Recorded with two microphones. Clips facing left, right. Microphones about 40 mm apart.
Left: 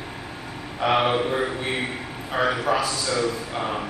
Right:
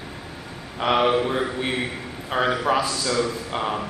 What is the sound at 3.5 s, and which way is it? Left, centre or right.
Speech, right.